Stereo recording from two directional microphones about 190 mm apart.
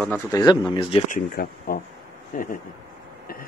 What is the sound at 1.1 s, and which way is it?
Speech, 50° left (ahead or behind).